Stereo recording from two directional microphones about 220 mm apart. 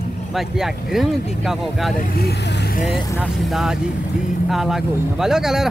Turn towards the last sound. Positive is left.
turn(degrees=0)  # may be behind; listen again after turning